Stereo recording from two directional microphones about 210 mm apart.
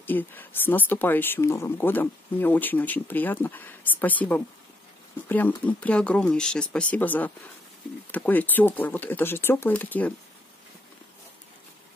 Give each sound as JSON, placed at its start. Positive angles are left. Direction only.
{"t": 0.0, "sound": "speech", "side_deg": 10}
{"t": 5.7, "sound": "speech", "side_deg": 5}